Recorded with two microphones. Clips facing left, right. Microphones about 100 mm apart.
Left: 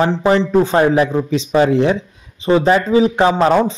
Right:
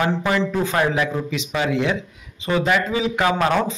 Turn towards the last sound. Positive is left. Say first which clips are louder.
# left 6 dB
turn(degrees=30)  # may be behind; listen again after turning